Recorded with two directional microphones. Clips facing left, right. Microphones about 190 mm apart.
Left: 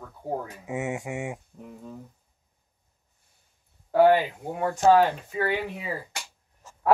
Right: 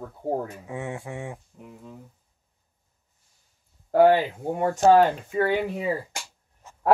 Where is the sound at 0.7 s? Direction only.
10° left (ahead or behind).